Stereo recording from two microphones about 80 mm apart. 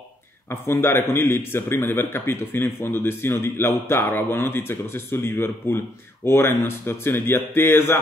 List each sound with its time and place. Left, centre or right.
0.5 s a man's voice: left